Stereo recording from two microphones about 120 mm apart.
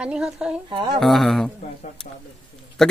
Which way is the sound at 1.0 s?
Centre (ahead or behind).